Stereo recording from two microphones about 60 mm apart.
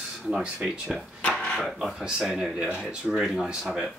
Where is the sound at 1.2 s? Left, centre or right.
Centre.